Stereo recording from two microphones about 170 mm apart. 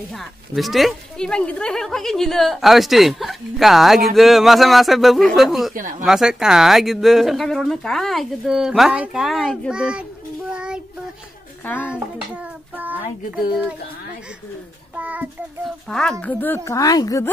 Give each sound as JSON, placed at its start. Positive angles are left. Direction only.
{"t": 0.1, "sound": "speech", "side_deg": 0}
{"t": 5.8, "sound": "speech", "side_deg": -50}
{"t": 6.0, "sound": "speech", "side_deg": -5}
{"t": 10.5, "sound": "child singing", "side_deg": -5}
{"t": 11.6, "sound": "speech", "side_deg": 10}
{"t": 11.9, "sound": "a child's voice", "side_deg": -10}
{"t": 15.0, "sound": "a child's voice", "side_deg": -10}
{"t": 15.9, "sound": "speech", "side_deg": 5}